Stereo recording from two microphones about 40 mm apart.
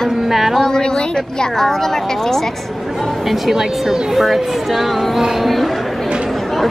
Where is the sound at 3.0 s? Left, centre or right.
Centre.